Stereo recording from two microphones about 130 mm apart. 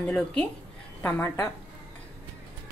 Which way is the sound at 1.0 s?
20° left (ahead or behind).